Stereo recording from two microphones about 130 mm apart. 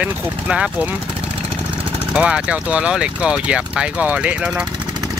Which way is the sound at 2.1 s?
10° right (ahead or behind).